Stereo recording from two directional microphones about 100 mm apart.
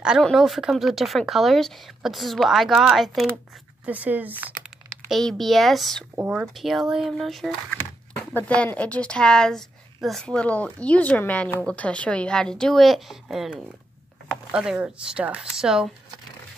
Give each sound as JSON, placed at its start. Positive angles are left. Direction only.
{"t": 0.2, "sound": "a woman's voice", "side_deg": 0}
{"t": 3.8, "sound": "speech", "side_deg": -15}
{"t": 4.6, "sound": "a woman's voice", "side_deg": 0}
{"t": 8.2, "sound": "a sound", "side_deg": 15}
{"t": 8.6, "sound": "a woman's voice", "side_deg": 15}
{"t": 14.5, "sound": "speech", "side_deg": -10}